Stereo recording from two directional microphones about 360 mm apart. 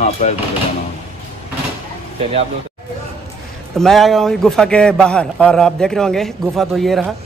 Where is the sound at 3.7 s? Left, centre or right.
Centre.